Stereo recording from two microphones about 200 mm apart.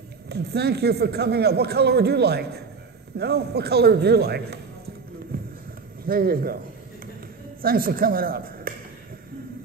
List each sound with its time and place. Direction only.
0.3 s speech: 55° right (ahead or behind)
5.3 s a sound: 45° right (ahead or behind)
6.0 s speech: 45° right (ahead or behind)
7.6 s speech: 45° right (ahead or behind)